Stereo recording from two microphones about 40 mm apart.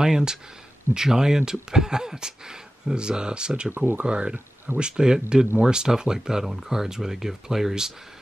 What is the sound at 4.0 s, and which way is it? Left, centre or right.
Speech, right.